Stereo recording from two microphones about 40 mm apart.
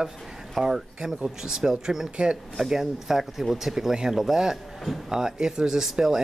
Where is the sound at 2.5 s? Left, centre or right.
Centre.